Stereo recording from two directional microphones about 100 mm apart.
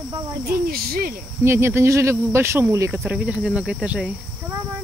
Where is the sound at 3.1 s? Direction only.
10° right (ahead or behind).